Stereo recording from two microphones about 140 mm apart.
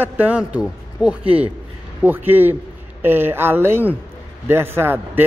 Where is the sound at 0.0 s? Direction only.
10° right (ahead or behind).